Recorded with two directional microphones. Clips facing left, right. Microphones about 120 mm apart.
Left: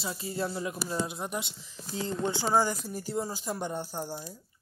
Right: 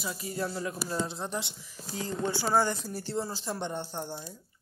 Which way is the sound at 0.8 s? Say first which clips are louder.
Even; 10° left (ahead or behind).